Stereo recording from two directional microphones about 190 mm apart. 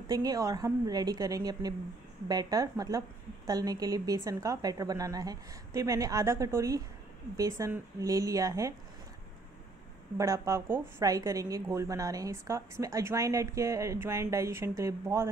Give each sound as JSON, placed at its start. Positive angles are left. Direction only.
{"t": 0.1, "sound": "a woman's voice", "side_deg": -20}
{"t": 10.1, "sound": "a woman's voice", "side_deg": -15}